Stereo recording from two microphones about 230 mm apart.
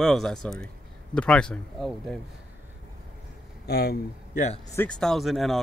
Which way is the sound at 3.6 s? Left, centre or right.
Left.